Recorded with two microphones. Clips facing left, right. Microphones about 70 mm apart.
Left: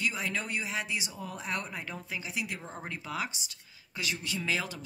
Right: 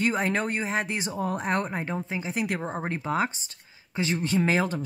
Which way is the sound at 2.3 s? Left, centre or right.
Right.